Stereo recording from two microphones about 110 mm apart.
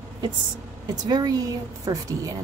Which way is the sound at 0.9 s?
35° right (ahead or behind).